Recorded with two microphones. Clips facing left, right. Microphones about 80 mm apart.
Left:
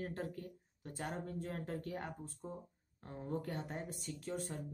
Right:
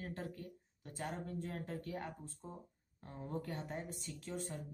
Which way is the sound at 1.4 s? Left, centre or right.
Left.